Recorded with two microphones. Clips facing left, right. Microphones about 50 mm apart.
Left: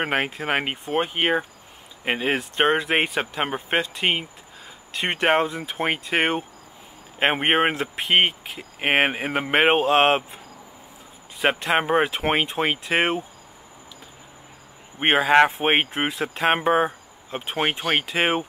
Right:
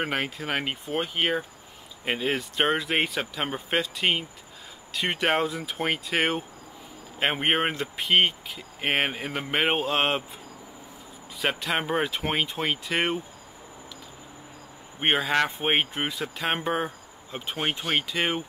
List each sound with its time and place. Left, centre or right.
0.0 s speech: left
11.4 s speech: left
15.0 s speech: left